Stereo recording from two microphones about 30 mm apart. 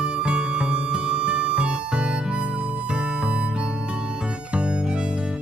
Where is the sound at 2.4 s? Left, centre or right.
Right.